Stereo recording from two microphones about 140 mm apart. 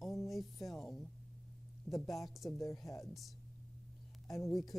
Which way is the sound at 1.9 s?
20° left (ahead or behind).